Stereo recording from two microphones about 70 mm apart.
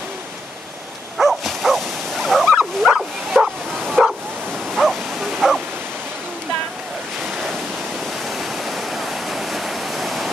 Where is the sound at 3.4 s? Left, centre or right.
Centre.